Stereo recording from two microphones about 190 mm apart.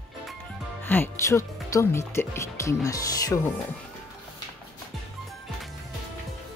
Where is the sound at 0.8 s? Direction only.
10° left (ahead or behind).